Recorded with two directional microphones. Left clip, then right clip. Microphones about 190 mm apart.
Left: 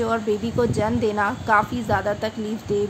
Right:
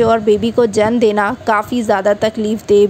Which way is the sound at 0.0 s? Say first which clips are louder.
Right 11 dB; 40° right (ahead or behind).